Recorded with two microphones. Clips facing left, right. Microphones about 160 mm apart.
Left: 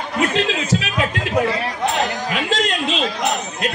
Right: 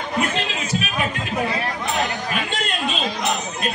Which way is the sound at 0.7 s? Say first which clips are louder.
Left 4 dB; 90° left.